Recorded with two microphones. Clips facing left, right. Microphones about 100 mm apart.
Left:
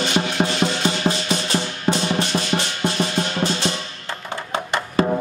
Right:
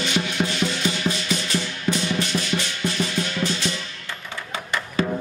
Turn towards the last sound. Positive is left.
turn(degrees=35)  # may be behind; listen again after turning